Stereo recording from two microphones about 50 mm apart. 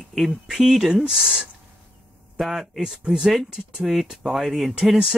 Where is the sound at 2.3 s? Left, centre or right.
Centre.